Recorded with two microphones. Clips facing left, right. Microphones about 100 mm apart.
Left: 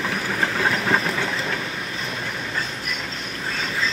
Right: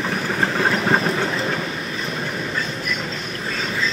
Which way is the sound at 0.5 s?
30° right (ahead or behind).